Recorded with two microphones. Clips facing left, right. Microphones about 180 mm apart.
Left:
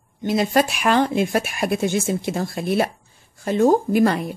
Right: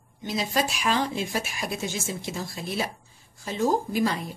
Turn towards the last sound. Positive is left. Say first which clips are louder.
# left 8 dB
turn(degrees=60)  # may be behind; listen again after turning